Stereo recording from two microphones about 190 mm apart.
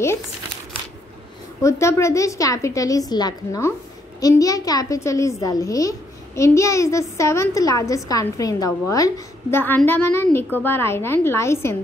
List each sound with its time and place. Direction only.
1.6 s a child's voice: 15° left (ahead or behind)